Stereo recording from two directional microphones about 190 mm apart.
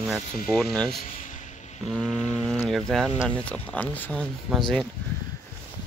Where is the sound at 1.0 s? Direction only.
40° left (ahead or behind).